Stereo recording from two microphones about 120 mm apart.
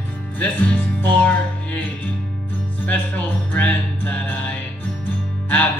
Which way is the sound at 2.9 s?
15° left (ahead or behind).